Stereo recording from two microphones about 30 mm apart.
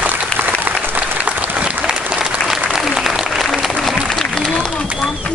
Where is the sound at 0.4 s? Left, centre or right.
Right.